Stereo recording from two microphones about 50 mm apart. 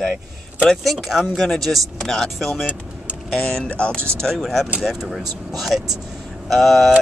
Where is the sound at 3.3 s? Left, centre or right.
Centre.